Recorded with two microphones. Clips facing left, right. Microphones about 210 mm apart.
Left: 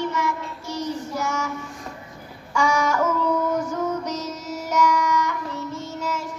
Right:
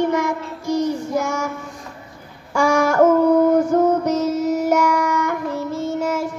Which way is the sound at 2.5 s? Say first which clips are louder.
Right 6 dB; 55° right (ahead or behind).